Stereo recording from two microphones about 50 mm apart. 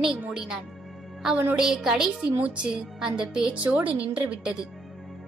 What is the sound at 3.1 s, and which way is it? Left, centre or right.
Speech, centre.